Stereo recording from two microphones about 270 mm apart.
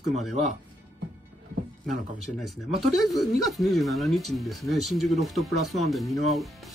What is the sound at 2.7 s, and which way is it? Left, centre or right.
Speech, centre.